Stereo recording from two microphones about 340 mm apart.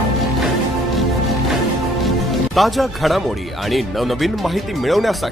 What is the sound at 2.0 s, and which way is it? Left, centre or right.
Speech, centre.